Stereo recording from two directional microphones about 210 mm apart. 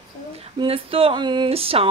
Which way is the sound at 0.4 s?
25° right (ahead or behind).